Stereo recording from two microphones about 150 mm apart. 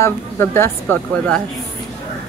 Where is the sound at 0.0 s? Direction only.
15° left (ahead or behind).